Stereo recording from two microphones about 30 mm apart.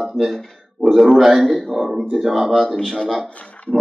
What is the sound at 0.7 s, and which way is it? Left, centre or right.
Speech, centre.